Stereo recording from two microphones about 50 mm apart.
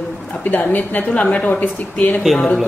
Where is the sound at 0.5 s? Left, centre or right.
Left.